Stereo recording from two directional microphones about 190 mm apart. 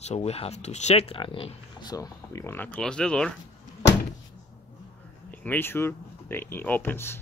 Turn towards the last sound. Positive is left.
turn(degrees=10)  # may be behind; listen again after turning